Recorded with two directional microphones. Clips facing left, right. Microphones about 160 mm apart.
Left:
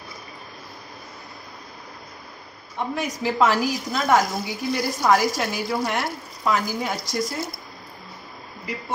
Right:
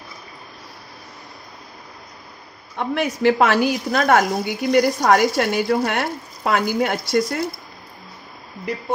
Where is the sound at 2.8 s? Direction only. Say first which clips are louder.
Right 7 dB; 70° right (ahead or behind).